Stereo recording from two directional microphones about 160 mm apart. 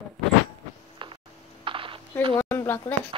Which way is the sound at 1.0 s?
30° right (ahead or behind).